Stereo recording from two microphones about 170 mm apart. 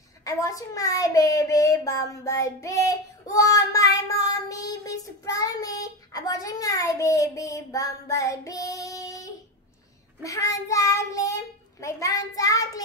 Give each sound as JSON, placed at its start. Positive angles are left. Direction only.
{"t": 0.2, "sound": "speech", "side_deg": 20}